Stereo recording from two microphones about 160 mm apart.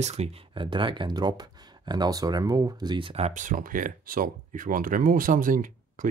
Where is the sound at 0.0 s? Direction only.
40° right (ahead or behind).